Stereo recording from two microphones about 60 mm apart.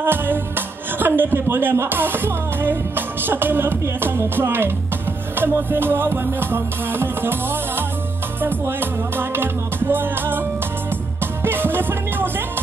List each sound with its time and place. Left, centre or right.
0.0 s speech: right
8.4 s music: right
11.4 s music: right